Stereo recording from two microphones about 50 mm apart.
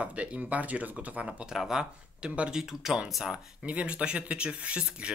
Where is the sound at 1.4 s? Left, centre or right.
Centre.